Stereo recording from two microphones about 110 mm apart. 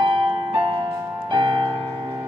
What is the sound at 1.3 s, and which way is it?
Music, 45° right (ahead or behind).